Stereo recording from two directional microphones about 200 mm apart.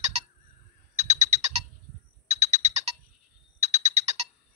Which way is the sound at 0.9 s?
35° right (ahead or behind).